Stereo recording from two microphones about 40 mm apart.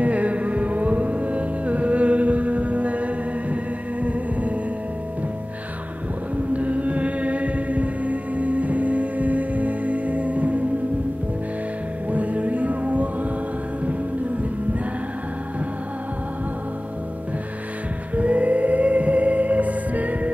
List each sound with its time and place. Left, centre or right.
0.0 s music: right
6.3 s chant: right
12.1 s music: right
18.1 s music: right